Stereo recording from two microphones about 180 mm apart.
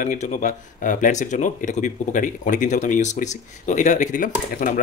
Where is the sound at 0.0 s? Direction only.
45° left (ahead or behind).